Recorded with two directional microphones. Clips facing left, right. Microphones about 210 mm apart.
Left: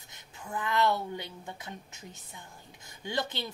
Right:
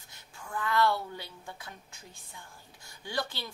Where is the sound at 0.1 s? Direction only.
20° left (ahead or behind).